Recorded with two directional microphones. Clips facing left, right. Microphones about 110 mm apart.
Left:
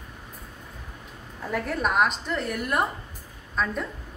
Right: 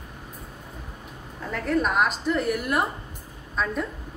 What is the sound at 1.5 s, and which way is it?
A woman's voice, 5° left (ahead or behind).